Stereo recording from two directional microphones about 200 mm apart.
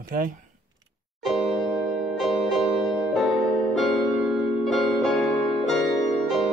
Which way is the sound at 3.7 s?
Centre (ahead or behind).